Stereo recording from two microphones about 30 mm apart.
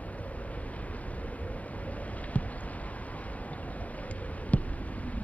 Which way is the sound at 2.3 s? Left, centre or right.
Left.